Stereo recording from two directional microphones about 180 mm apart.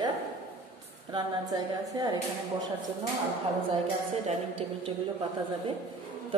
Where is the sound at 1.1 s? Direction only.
20° right (ahead or behind).